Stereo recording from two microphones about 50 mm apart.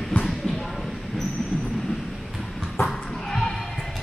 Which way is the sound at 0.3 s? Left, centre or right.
Centre.